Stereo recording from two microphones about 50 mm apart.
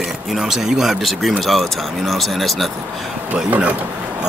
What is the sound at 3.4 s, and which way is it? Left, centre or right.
Speech, right.